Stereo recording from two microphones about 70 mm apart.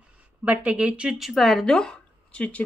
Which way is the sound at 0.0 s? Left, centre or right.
Right.